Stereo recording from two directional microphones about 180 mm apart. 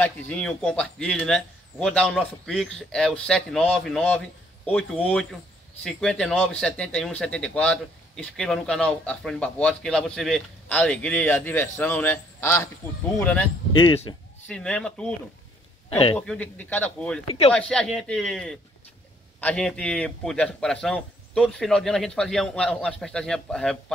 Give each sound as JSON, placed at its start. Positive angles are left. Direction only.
{"t": 0.0, "sound": "speech", "side_deg": 5}
{"t": 13.7, "sound": "speech", "side_deg": 25}
{"t": 14.5, "sound": "speech", "side_deg": 5}
{"t": 15.9, "sound": "speech", "side_deg": 30}
{"t": 16.2, "sound": "speech", "side_deg": 5}